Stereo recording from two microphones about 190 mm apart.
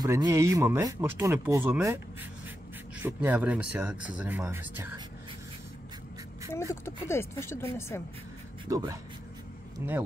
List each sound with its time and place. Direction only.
0.0 s speech: 15° right (ahead or behind)
3.0 s speech: 10° right (ahead or behind)
6.7 s speech: 15° left (ahead or behind)
8.6 s speech: 15° right (ahead or behind)